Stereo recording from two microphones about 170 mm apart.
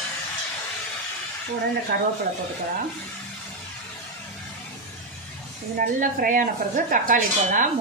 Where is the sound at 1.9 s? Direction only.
60° right (ahead or behind).